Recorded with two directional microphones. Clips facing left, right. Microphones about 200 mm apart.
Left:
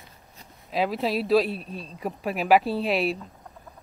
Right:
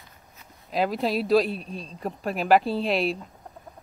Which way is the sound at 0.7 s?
Centre (ahead or behind).